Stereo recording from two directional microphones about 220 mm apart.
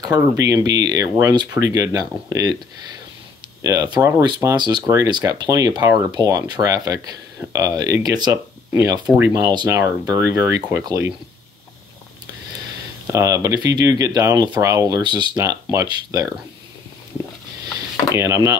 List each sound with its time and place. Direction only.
0.0 s speech: 15° right (ahead or behind)
3.6 s speech: 15° right (ahead or behind)
13.0 s speech: 15° right (ahead or behind)
18.1 s speech: 15° right (ahead or behind)